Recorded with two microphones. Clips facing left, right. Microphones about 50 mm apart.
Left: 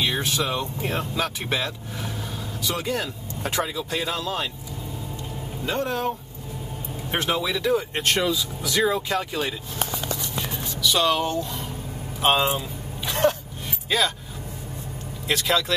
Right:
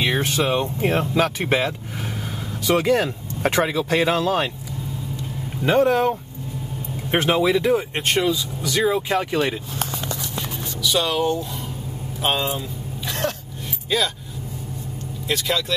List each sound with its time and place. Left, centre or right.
0.1 s speech: right
2.6 s speech: right
5.7 s speech: right
7.1 s speech: right
8.0 s speech: centre
9.3 s speech: right
10.8 s speech: centre
12.4 s vehicle: centre
13.8 s speech: centre
15.2 s speech: centre